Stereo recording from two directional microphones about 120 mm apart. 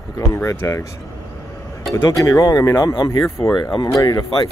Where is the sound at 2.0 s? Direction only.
25° left (ahead or behind).